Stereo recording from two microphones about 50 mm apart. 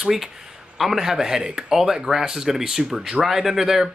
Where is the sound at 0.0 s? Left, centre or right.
Centre.